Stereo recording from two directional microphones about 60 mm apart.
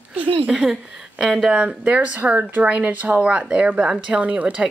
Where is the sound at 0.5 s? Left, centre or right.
Centre.